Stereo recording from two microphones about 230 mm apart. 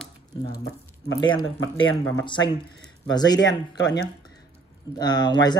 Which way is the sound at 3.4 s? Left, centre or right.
Left.